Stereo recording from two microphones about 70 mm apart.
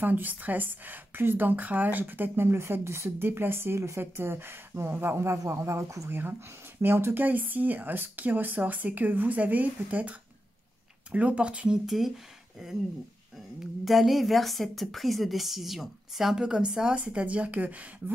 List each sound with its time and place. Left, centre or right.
0.0 s speech: right
6.0 s speech: right; by 12.1 s centre
13.8 s a woman's voice: centre; by 18.1 s right